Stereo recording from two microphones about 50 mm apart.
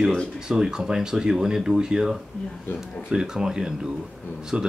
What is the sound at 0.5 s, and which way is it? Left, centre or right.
Speech, centre.